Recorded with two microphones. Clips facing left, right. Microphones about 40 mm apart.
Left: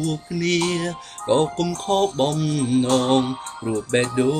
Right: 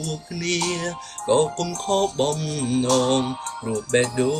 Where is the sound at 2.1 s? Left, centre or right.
Left.